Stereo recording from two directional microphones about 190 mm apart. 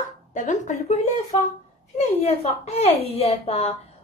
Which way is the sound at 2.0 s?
35° left (ahead or behind).